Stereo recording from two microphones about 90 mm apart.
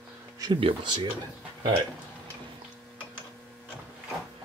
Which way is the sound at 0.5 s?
80° right.